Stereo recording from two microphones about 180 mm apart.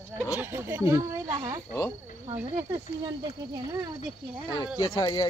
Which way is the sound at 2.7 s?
20° right (ahead or behind).